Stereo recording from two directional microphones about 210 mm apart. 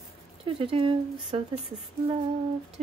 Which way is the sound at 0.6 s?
25° right (ahead or behind).